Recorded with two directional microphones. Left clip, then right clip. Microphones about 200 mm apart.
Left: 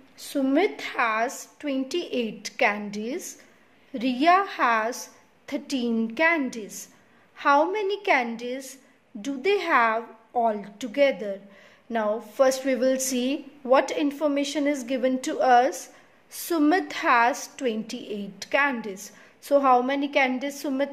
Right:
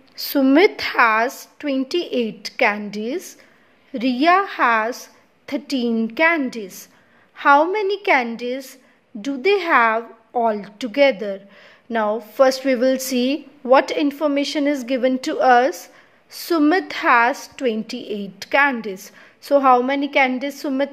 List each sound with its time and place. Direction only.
0.3 s a woman's voice: 30° right (ahead or behind)